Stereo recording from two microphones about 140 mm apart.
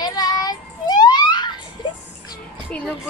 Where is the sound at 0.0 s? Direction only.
30° left (ahead or behind).